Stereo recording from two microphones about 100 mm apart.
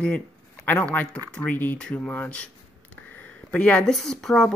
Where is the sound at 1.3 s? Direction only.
15° left (ahead or behind).